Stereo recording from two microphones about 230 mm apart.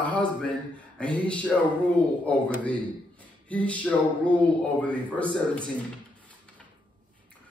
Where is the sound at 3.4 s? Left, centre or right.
Centre.